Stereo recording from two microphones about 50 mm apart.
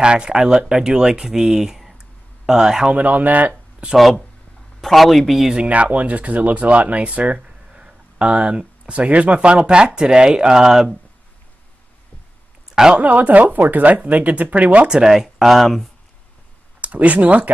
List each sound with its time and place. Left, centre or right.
0.0 s speech: centre
2.9 s speech: right
3.9 s speech: centre
5.7 s speech: right; by 11.0 s centre
12.9 s speech: right
14.9 s speech: centre
16.8 s speech: right